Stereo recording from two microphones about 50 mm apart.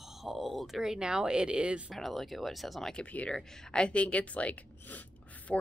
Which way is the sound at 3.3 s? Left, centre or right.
Centre.